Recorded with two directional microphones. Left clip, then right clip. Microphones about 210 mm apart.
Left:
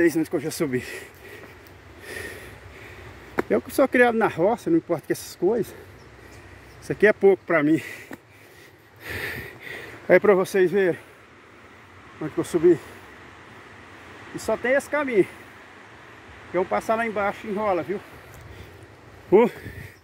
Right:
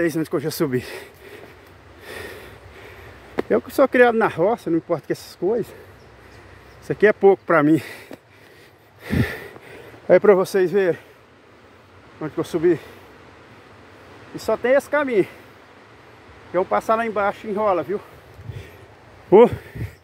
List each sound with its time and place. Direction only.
0.0 s speech: 20° right (ahead or behind)
2.0 s a sound: 15° right (ahead or behind)
3.3 s speech: 10° right (ahead or behind)
6.9 s speech: 10° right (ahead or behind)
7.4 s speech: 25° right (ahead or behind)
9.0 s a sound: 10° right (ahead or behind)
10.0 s speech: 15° right (ahead or behind)
12.2 s speech: centre (ahead or behind)
14.3 s speech: 5° right (ahead or behind)
16.5 s speech: 5° right (ahead or behind)
19.3 s speech: 15° right (ahead or behind)